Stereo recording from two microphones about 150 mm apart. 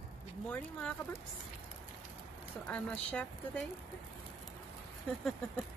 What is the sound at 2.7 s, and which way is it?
Speech, 10° left (ahead or behind).